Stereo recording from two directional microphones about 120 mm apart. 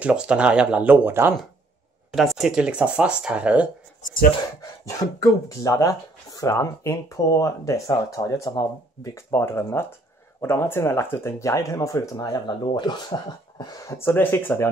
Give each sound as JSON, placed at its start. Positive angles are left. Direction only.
{"t": 0.0, "sound": "speech", "side_deg": -10}
{"t": 2.1, "sound": "speech", "side_deg": 0}
{"t": 4.6, "sound": "speech", "side_deg": 30}
{"t": 13.9, "sound": "speech", "side_deg": 20}